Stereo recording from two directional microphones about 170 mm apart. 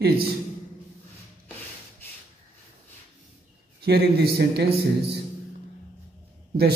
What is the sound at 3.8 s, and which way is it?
Speech, 70° right (ahead or behind).